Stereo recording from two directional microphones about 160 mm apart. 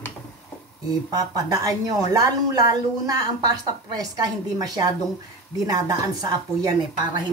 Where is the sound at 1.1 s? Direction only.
25° right (ahead or behind).